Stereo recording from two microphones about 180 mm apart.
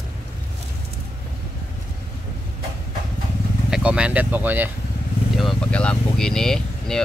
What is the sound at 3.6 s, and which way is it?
Speech, 5° right (ahead or behind).